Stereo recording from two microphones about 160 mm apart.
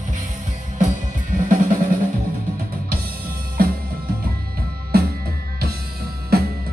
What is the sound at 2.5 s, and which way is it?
Music, 65° right (ahead or behind).